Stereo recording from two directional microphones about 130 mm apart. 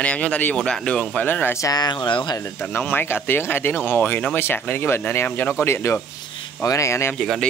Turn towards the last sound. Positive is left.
turn(degrees=5)  # may be behind; listen again after turning